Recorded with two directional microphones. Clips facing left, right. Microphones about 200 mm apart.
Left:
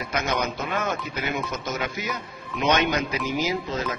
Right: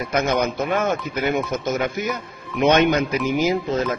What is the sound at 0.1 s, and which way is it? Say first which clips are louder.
Speech: right 6 dB; 50° right (ahead or behind).